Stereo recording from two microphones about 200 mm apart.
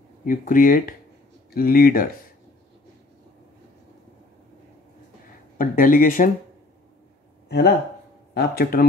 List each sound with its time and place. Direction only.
0.2 s speech: 40° left (ahead or behind)
5.6 s speech: 45° left (ahead or behind)
7.4 s speech: 55° left (ahead or behind)